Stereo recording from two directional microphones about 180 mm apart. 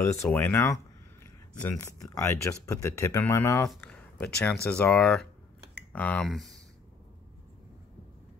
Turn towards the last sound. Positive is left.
turn(degrees=0)  # may be behind; listen again after turning